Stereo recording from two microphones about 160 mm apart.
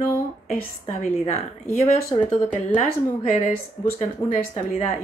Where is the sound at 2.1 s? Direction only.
30° left (ahead or behind).